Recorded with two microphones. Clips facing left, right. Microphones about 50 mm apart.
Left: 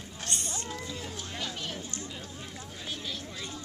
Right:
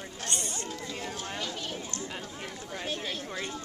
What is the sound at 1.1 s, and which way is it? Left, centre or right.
Speech, right.